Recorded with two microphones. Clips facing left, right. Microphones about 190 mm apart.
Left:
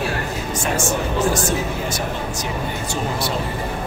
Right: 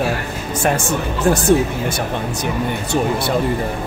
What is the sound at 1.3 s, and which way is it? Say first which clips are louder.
Speech: right 8 dB; 60° right (ahead or behind).